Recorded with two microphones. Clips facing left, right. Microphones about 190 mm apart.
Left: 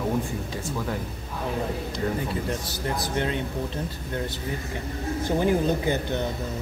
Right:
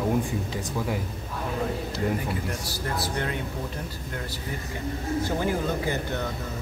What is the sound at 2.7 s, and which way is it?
Speech, 20° left (ahead or behind).